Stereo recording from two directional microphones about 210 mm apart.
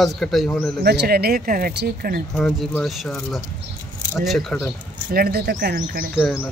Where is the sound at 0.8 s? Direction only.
50° right (ahead or behind).